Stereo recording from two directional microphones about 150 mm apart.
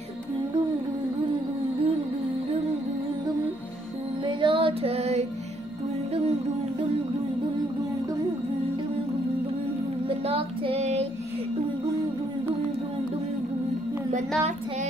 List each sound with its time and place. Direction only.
4.3 s female singing: 35° right (ahead or behind)
10.0 s child singing: 40° right (ahead or behind)